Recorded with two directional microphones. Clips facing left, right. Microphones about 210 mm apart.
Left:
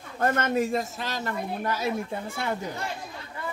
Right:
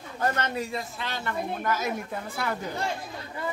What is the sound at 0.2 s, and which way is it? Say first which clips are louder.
A man's voice: left 4 dB; 45° left (ahead or behind).